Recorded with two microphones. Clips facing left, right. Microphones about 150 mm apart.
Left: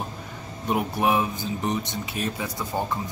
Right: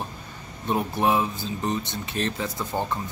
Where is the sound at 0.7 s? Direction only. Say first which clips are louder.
Even; 10° left (ahead or behind).